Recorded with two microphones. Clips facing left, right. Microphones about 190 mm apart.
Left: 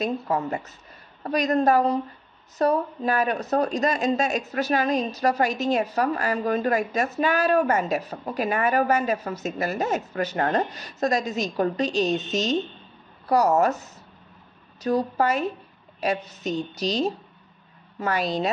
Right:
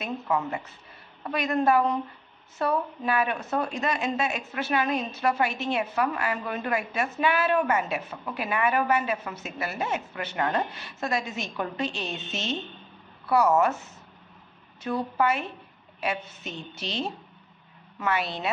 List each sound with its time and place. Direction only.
0.0 s a woman's voice: 40° left (ahead or behind)